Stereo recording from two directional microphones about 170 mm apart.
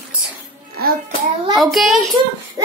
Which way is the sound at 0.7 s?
60° right (ahead or behind).